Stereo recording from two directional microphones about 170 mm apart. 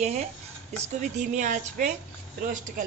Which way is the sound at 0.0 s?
40° right (ahead or behind).